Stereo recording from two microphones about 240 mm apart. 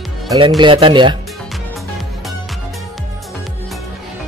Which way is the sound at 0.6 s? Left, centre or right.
Right.